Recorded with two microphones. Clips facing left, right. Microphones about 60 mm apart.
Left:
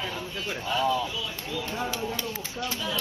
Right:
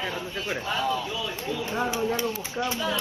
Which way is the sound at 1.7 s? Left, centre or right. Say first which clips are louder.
Right 6 dB; right.